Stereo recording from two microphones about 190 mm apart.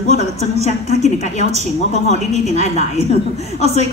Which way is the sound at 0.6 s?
35° left (ahead or behind).